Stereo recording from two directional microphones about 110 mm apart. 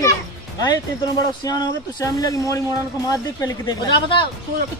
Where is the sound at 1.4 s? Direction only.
35° left (ahead or behind).